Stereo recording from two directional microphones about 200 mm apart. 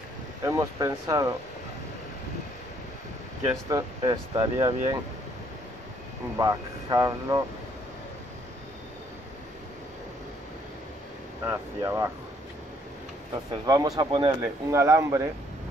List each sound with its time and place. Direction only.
0.4 s speech: 15° right (ahead or behind)
3.6 s speech: 20° right (ahead or behind)
6.3 s speech: 20° right (ahead or behind)
11.4 s speech: 15° right (ahead or behind)
13.7 s speech: 20° right (ahead or behind)